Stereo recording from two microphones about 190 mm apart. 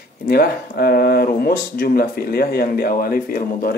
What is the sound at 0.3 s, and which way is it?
Speech, 55° left (ahead or behind).